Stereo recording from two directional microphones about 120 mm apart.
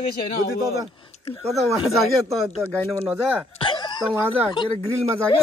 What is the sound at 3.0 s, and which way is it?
Speech, 15° right (ahead or behind).